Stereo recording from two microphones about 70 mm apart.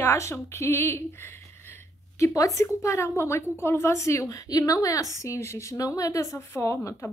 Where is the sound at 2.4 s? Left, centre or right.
Left.